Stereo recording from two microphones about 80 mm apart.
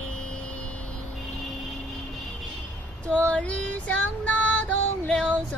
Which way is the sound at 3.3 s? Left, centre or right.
Centre.